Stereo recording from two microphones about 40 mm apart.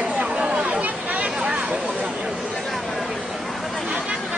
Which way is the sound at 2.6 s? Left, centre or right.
Centre.